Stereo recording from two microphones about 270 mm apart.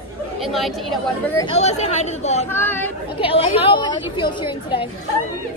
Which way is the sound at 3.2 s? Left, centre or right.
Centre.